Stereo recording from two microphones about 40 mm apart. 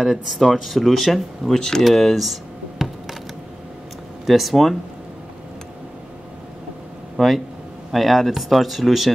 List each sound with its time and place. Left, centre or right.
0.0 s speech: centre
2.8 s a sound: centre
4.3 s speech: centre
7.2 s speech: centre